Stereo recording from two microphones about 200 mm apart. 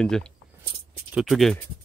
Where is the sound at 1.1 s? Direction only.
Centre (ahead or behind).